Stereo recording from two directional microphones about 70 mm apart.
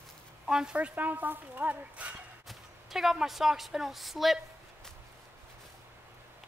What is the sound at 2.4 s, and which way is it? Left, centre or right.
A woman's voice, centre.